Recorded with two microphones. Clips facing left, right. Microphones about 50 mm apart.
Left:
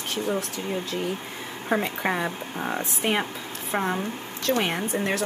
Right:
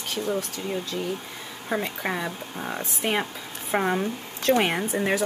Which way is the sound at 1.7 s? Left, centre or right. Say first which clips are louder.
Left 3 dB; centre.